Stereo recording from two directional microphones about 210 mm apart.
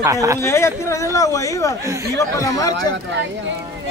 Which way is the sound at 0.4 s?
10° left (ahead or behind).